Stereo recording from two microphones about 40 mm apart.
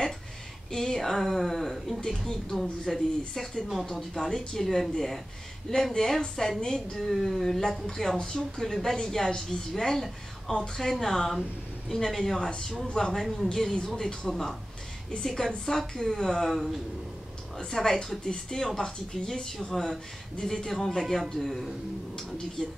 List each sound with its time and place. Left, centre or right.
0.7 s speech: centre
3.8 s speech: centre
6.6 s a woman's voice: centre
7.0 s speech: centre
10.9 s speech: centre
12.4 s a woman's voice: centre
17.6 s speech: centre